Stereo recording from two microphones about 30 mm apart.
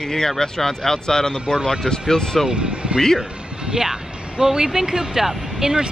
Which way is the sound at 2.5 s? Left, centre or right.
Right.